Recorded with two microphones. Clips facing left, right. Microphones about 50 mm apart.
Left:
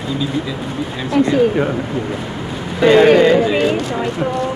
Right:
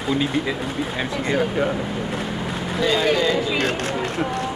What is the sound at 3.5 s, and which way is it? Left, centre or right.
Speech, right.